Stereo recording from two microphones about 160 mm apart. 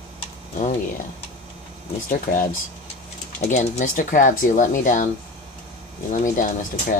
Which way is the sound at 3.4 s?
50° left (ahead or behind).